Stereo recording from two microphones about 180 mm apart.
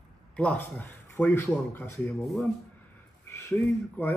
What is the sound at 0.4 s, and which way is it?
Speech, 10° left (ahead or behind).